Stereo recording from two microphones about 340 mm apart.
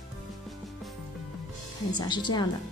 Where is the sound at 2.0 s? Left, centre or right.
Centre.